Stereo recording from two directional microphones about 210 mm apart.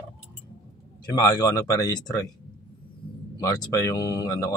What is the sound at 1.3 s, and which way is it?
Speech, 20° left (ahead or behind).